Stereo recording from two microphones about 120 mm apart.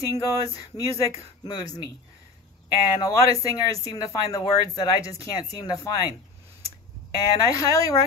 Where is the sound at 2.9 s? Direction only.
30° left (ahead or behind).